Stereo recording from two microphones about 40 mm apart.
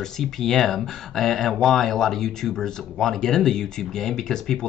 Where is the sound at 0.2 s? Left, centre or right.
Centre.